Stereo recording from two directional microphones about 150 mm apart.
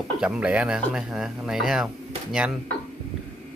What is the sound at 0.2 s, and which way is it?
Speech, 5° right (ahead or behind).